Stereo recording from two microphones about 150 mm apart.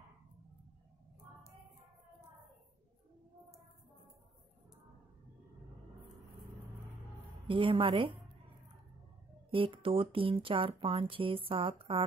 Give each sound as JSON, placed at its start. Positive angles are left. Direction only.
{"t": 7.4, "sound": "speech", "side_deg": -35}
{"t": 9.5, "sound": "speech", "side_deg": -35}